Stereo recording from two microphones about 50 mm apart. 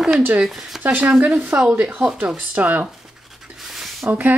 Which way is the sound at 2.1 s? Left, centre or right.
Right.